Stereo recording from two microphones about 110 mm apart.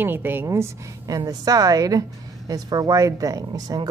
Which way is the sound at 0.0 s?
20° right (ahead or behind).